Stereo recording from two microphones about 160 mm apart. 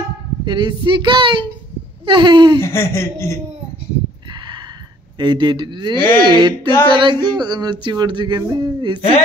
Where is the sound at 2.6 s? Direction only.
15° left (ahead or behind).